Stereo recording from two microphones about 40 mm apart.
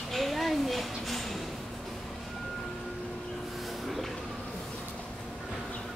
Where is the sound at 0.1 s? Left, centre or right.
Centre.